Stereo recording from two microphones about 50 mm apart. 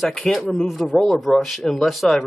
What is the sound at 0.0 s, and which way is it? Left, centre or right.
A man's voice, centre.